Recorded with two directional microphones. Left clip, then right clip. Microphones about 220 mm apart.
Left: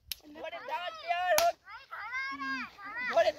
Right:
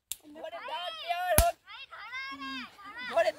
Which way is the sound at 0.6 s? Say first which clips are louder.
Right 1 dB; 15° right (ahead or behind).